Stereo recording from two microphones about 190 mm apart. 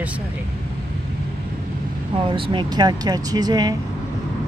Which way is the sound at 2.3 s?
25° right (ahead or behind).